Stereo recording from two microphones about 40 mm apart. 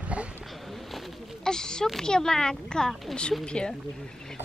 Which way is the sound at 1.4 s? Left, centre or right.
Centre.